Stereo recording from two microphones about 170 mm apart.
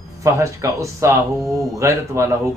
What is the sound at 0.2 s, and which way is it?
A man's voice, 20° right (ahead or behind).